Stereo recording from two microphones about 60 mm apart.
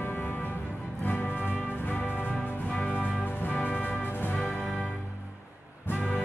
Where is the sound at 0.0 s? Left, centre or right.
Left.